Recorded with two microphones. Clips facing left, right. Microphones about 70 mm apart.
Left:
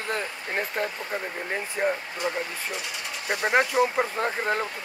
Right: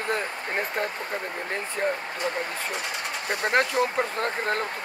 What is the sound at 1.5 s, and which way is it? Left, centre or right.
Speech, centre.